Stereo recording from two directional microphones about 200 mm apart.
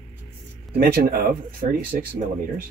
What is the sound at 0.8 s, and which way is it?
Speech, 50° right (ahead or behind).